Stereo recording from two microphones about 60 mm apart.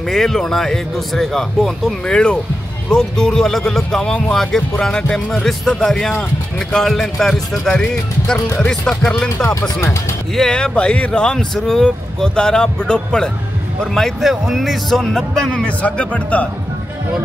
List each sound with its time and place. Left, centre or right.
0.1 s speech: centre
9.5 s speech: left
10.3 s speech: centre
15.6 s speech: left